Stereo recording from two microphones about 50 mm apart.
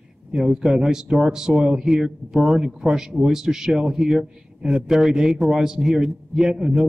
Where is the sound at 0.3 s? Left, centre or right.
Centre.